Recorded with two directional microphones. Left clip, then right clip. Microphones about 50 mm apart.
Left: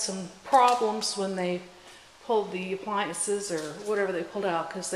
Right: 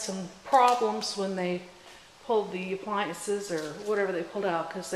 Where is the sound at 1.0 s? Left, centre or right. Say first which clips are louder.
Left 1 dB; left.